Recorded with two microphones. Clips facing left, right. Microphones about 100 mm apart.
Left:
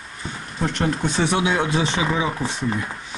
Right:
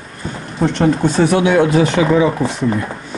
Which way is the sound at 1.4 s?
40° right (ahead or behind).